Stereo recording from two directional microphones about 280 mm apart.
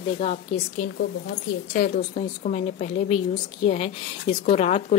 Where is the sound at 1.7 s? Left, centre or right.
Left.